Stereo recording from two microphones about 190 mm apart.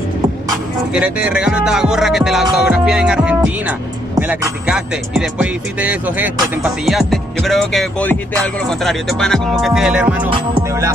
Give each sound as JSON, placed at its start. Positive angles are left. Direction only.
{"t": 0.5, "sound": "music", "side_deg": -5}